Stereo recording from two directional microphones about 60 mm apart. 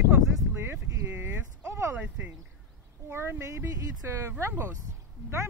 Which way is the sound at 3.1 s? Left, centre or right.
Right.